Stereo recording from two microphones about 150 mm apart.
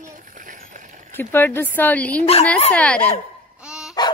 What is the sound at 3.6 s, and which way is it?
Dog, 5° right (ahead or behind).